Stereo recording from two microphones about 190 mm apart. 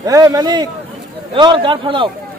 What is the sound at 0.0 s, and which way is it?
Speech, 20° right (ahead or behind).